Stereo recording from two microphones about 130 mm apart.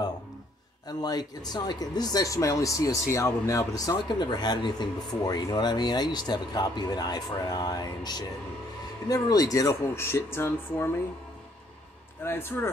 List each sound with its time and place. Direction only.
0.8 s speech: 30° left (ahead or behind)
12.2 s speech: 20° left (ahead or behind)